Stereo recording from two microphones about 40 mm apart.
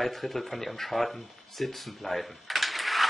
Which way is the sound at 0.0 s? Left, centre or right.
Centre.